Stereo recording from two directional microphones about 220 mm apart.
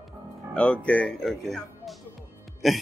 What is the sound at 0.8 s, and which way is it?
Speech, 5° left (ahead or behind).